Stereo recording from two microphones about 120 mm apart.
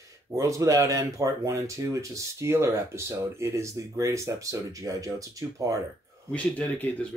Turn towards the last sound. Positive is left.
turn(degrees=10)  # may be behind; listen again after turning